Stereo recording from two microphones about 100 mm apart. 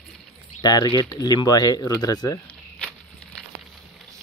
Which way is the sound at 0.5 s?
45° left (ahead or behind).